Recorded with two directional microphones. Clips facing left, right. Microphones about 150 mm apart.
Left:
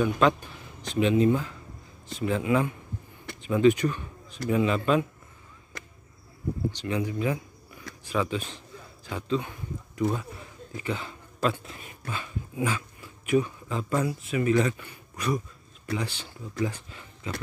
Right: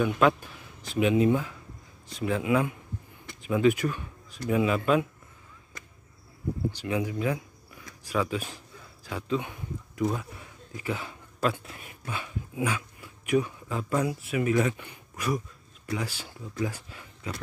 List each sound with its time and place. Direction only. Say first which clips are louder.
0.0 s a man's voice: even; centre (ahead or behind)
5.7 s a sound: left 5 dB; 75° left (ahead or behind)
6.7 s a man's voice: even; 10° right (ahead or behind)
15.1 s speech: left 1 dB; 5° right (ahead or behind)